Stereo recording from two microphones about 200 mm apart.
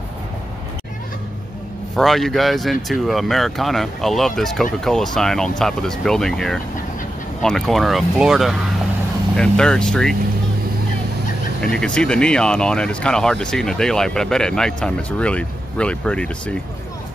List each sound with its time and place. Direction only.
2.0 s speech: centre (ahead or behind)
11.6 s speech: 5° left (ahead or behind)